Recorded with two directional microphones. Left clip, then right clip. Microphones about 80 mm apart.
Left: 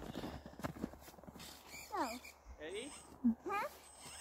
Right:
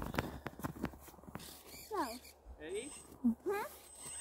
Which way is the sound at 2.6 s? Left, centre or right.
Left.